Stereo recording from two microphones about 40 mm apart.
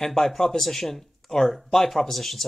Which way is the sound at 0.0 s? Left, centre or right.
Centre.